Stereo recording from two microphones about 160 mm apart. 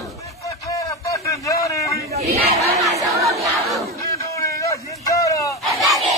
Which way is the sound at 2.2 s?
75° right (ahead or behind).